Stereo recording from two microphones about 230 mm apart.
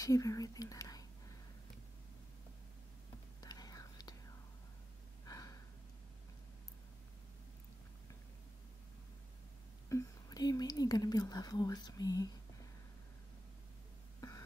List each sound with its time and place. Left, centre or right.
0.0 s speech: centre
3.3 s whispering: centre
5.2 s a sound: centre
9.8 s whispering: centre